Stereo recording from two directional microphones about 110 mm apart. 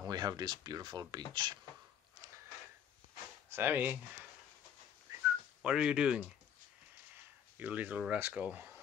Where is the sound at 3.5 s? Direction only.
20° right (ahead or behind).